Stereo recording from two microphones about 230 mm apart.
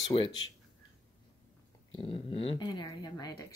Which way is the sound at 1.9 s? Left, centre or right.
Left.